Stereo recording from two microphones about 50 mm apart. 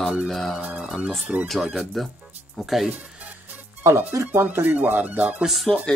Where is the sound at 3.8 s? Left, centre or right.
Right.